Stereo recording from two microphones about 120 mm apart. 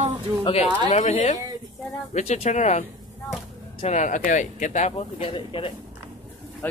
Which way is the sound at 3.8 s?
80° left.